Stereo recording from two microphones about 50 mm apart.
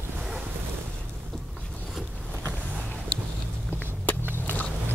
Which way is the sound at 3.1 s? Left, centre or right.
Left.